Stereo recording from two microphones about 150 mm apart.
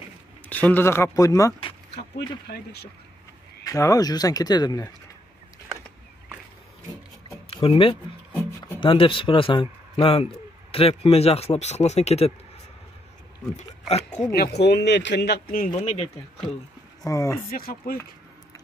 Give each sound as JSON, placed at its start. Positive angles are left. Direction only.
{"t": 0.5, "sound": "speech", "side_deg": 10}
{"t": 2.1, "sound": "speech", "side_deg": 90}
{"t": 3.6, "sound": "speech", "side_deg": 20}
{"t": 7.4, "sound": "speech", "side_deg": 40}
{"t": 13.8, "sound": "speech", "side_deg": 45}
{"t": 14.3, "sound": "speech", "side_deg": 90}
{"t": 15.7, "sound": "speech", "side_deg": 45}
{"t": 17.0, "sound": "speech", "side_deg": 20}
{"t": 17.5, "sound": "speech", "side_deg": 75}